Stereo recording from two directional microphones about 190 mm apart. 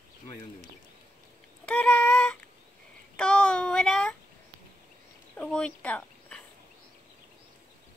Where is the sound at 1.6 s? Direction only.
5° left (ahead or behind).